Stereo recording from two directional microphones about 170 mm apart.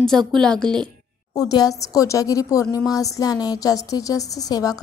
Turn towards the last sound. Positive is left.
turn(degrees=20)  # may be behind; listen again after turning